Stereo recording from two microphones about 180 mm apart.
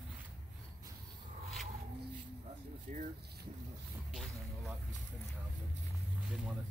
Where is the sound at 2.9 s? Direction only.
40° right (ahead or behind).